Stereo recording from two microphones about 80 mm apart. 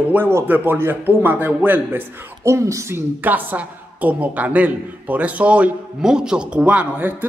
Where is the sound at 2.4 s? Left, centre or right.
Right.